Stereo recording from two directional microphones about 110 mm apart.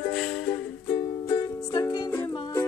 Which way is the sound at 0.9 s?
35° left (ahead or behind).